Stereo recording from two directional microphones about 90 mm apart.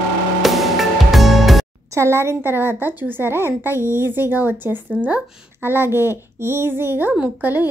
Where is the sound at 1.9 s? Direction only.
30° right (ahead or behind).